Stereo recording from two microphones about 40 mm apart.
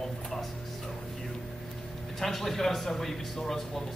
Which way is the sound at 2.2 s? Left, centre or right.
Centre.